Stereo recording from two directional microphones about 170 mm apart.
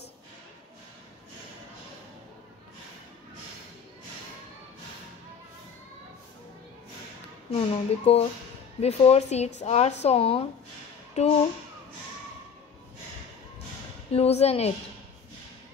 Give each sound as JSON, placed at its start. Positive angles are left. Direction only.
{"t": 7.5, "sound": "a woman's voice", "side_deg": 35}
{"t": 14.1, "sound": "a woman's voice", "side_deg": 35}